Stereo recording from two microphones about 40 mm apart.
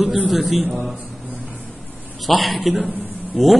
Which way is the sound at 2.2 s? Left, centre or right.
Centre.